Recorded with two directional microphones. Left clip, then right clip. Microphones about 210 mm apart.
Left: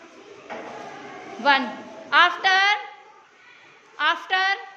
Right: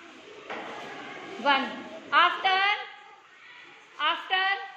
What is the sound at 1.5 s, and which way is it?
A woman's voice, 25° left (ahead or behind).